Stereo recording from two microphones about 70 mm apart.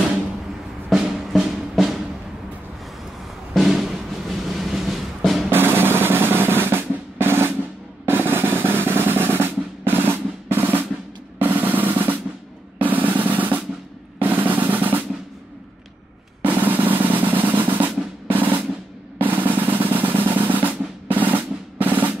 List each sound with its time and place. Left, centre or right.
0.9 s music: centre
3.5 s music: centre
5.5 s drum roll: right
8.0 s drum: right
11.3 s drum roll: right
16.4 s drum roll: right